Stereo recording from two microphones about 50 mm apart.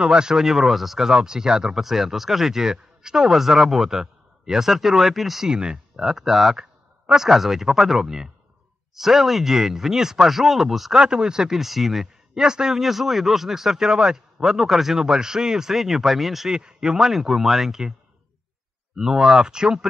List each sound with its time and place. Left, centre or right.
0.0 s a man's voice: centre
5.5 s speech: centre
6.0 s a man's voice: centre
11.0 s a man's voice: centre
18.9 s a man's voice: centre